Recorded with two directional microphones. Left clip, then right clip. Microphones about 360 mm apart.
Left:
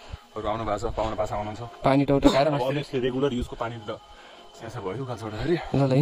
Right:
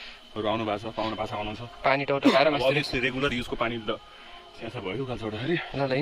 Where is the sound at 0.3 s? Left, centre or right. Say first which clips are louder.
Even; centre.